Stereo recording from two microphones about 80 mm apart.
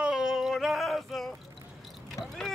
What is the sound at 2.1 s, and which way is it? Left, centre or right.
Vehicle, centre.